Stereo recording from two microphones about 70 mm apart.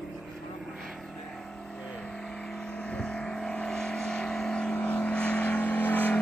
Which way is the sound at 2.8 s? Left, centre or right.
Centre.